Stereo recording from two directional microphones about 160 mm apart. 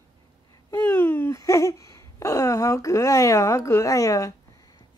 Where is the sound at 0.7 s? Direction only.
15° left (ahead or behind).